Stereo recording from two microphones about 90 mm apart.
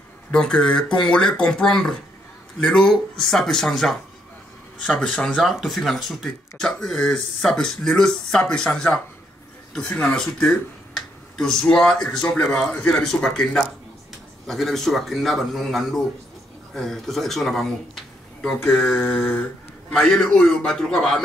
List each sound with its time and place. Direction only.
0.3 s speech: 10° left (ahead or behind)
18.4 s speech: 20° left (ahead or behind)
19.9 s speech: 5° left (ahead or behind)